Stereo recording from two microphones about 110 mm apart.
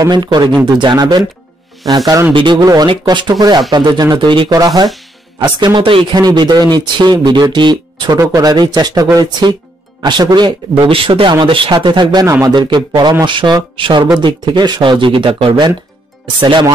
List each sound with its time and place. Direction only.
0.1 s speech: 40° right (ahead or behind)
2.3 s speech: 45° right (ahead or behind)
5.8 s speech: 50° right (ahead or behind)
6.2 s speech: 40° right (ahead or behind)